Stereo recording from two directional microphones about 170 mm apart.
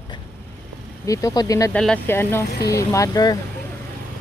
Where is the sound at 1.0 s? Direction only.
20° left (ahead or behind).